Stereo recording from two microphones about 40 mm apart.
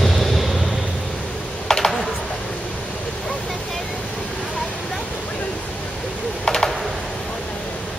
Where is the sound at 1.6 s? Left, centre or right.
Centre.